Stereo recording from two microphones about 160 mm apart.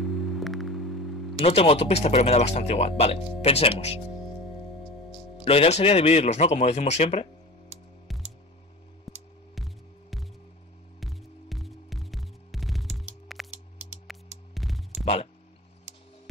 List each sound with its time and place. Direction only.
0.0 s music: centre (ahead or behind)
1.4 s speech: 40° left (ahead or behind)
5.1 s speech: 35° left (ahead or behind)
8.1 s a sound: centre (ahead or behind)
9.1 s music: centre (ahead or behind)
11.0 s hum: centre (ahead or behind)
14.5 s a sound: centre (ahead or behind)